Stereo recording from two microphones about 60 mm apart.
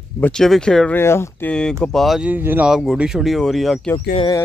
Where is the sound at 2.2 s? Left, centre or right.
Right.